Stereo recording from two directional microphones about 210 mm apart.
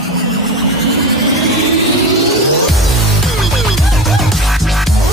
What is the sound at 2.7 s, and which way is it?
Music, centre (ahead or behind).